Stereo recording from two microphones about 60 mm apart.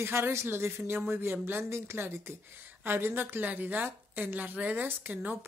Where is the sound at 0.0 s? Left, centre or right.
Right.